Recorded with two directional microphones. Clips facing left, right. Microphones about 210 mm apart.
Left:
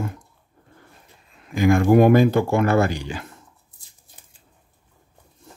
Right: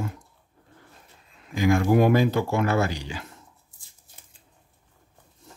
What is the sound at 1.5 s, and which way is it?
Speech, 55° left (ahead or behind).